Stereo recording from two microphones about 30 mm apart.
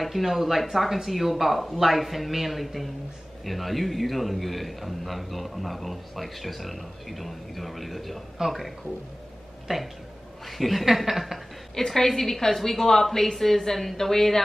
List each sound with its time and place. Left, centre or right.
0.0 s a man's voice: centre
9.7 s speech: centre
10.4 s a man's voice: centre
11.7 s speech: centre